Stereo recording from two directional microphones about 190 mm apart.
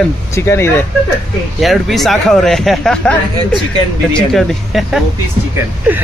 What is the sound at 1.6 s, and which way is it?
Speech, centre (ahead or behind).